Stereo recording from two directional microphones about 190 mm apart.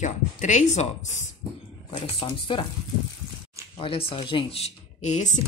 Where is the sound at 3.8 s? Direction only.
30° left (ahead or behind).